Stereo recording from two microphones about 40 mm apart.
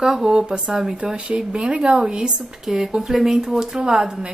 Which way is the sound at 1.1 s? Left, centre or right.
Right.